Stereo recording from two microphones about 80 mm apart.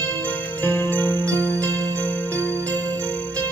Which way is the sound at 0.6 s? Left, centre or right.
Left.